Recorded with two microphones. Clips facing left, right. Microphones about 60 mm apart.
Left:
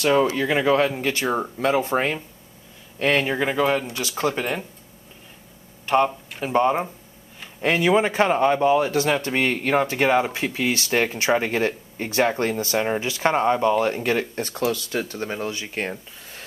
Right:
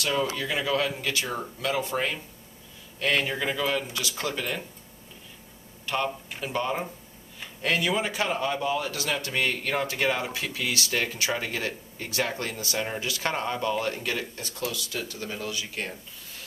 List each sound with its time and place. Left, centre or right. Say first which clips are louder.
0.0 s speech: left 8 dB; left
4.2 s speech: left 8 dB; centre
5.9 s speech: left 9 dB; left
14.1 s speech: left 9 dB; left